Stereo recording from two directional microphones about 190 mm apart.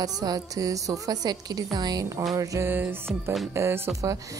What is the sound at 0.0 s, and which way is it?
A woman's voice, 20° right (ahead or behind).